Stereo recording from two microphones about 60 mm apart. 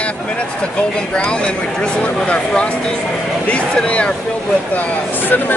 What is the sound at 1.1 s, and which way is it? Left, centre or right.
Speech, centre.